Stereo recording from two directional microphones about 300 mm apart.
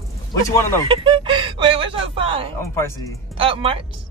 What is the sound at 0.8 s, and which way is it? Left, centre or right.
Speech, centre.